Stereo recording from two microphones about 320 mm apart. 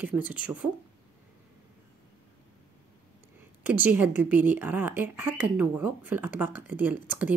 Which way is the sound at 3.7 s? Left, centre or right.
Centre.